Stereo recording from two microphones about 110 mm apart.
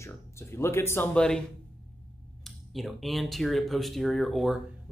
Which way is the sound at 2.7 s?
Centre (ahead or behind).